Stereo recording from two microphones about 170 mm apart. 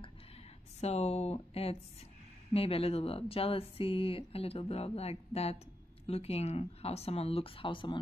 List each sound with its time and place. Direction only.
0.7 s speech: 40° left (ahead or behind)